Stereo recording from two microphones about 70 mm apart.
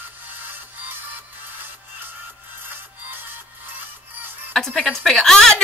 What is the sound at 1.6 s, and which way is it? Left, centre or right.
Music, right.